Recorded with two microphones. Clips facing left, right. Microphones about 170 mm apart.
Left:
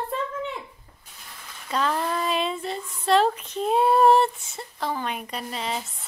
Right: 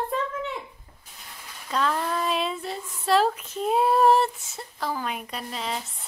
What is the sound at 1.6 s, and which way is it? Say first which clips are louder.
Speech: left 1 dB; centre (ahead or behind).